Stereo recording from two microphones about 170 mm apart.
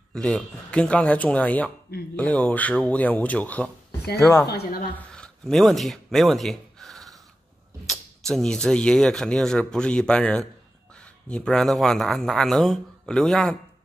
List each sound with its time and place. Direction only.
0.1 s speech: 5° left (ahead or behind)
4.5 s a woman's voice: 70° left (ahead or behind)
5.1 s a sound: 5° left (ahead or behind)
7.9 s speech: 5° left (ahead or behind)